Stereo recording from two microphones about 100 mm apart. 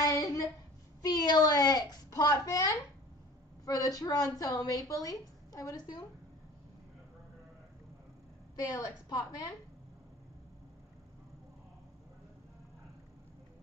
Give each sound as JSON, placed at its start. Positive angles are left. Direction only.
{"t": 0.0, "sound": "a sound", "side_deg": 35}
{"t": 1.0, "sound": "a woman's voice", "side_deg": 45}
{"t": 8.5, "sound": "a woman's voice", "side_deg": 35}